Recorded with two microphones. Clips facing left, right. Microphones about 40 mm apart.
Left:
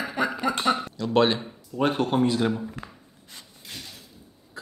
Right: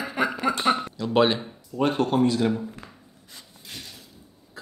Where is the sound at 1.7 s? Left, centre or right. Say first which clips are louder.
Right 1 dB; centre.